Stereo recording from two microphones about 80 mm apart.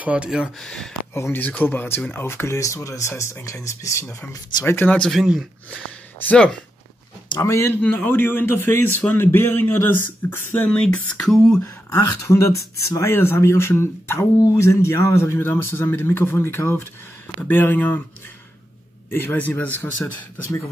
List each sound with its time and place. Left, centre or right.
0.0 s speech: centre
0.6 s a sound: centre
1.1 s speech: left
4.6 s a man's voice: left
5.1 s speech: centre
7.4 s speech: left
7.7 s a man's voice: left
10.7 s a sound: centre
12.2 s speech: left
14.4 s a man's voice: left
19.0 s a man's voice: left